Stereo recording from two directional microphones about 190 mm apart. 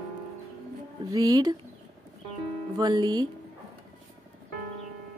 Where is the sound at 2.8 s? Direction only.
20° right (ahead or behind).